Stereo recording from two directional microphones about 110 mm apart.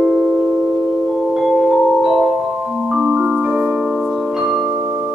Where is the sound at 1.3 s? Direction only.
5° right (ahead or behind).